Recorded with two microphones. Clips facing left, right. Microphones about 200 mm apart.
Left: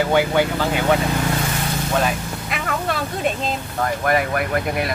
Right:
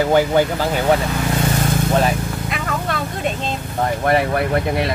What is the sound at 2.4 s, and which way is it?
Vehicle, centre (ahead or behind).